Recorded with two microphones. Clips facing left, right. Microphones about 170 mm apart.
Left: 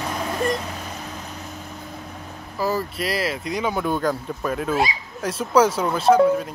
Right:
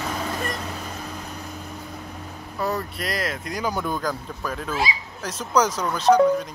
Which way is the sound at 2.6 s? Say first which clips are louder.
Left 3 dB; centre (ahead or behind).